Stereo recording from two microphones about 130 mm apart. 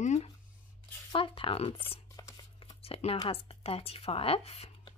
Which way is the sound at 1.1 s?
40° left (ahead or behind).